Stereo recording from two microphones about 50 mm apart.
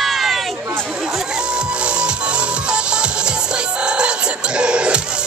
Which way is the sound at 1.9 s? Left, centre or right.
Right.